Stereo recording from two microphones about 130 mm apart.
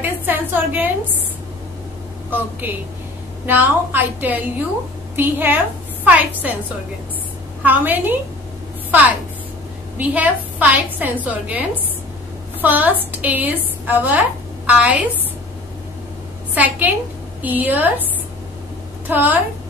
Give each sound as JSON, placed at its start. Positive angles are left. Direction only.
{"t": 0.0, "sound": "a sound", "side_deg": -15}
{"t": 2.6, "sound": "a woman's voice", "side_deg": -15}
{"t": 7.6, "sound": "a woman's voice", "side_deg": -15}
{"t": 9.9, "sound": "a woman's voice", "side_deg": -10}
{"t": 12.6, "sound": "a woman's voice", "side_deg": -15}
{"t": 16.5, "sound": "a woman's voice", "side_deg": -15}
{"t": 19.0, "sound": "a woman's voice", "side_deg": -15}